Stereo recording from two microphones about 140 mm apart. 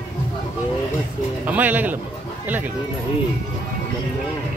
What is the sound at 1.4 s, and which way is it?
Speech, 10° right (ahead or behind).